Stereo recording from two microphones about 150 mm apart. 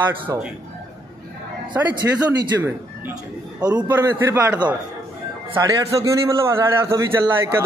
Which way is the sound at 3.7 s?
15° right (ahead or behind).